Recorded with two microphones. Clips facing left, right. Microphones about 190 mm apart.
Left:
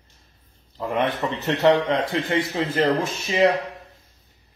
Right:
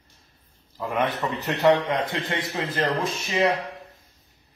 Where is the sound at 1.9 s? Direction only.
25° left (ahead or behind).